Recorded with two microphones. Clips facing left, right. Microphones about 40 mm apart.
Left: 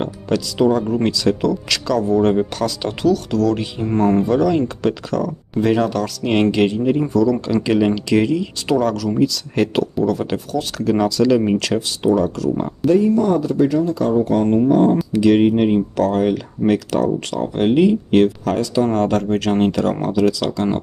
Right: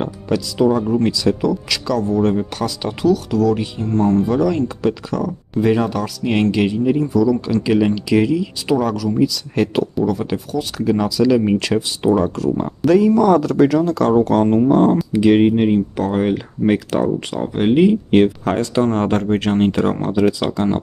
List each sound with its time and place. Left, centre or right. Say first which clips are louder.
0.3 s speech: even; centre
3.8 s speech: even; left
4.3 s speech: left 1 dB; centre
6.2 s speech: left 1 dB; centre
6.5 s speech: even; centre
12.1 s speech: even; right
12.8 s speech: right 2 dB; right
15.1 s speech: right 1 dB; centre
18.1 s speech: right 1 dB; right